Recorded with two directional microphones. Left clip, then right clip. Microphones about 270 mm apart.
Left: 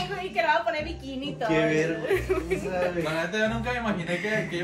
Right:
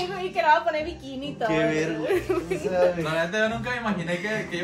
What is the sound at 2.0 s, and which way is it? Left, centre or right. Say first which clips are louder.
Speech: right 1 dB; right.